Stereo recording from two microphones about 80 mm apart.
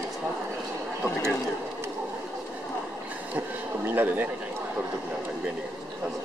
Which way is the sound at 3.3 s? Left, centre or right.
Right.